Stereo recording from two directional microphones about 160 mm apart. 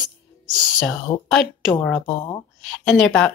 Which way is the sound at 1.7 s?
10° left (ahead or behind).